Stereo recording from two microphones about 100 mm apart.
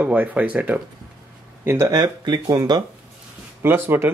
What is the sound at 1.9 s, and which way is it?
Speech, 45° right (ahead or behind).